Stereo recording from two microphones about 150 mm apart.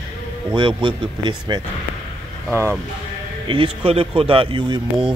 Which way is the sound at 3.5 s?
40° right (ahead or behind).